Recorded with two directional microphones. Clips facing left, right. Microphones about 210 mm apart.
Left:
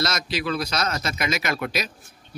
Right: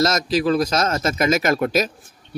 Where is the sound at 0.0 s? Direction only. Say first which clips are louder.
Right 8 dB; 45° right (ahead or behind).